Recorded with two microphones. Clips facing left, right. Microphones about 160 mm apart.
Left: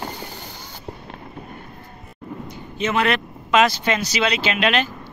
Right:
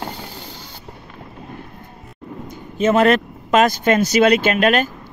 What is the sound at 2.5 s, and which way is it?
A man's voice, 45° right (ahead or behind).